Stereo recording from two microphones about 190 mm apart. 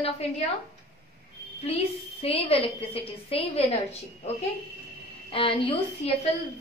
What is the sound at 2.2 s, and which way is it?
A woman's voice, 30° left (ahead or behind).